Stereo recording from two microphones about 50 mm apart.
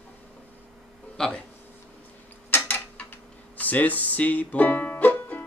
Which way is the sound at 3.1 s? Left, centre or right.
Left.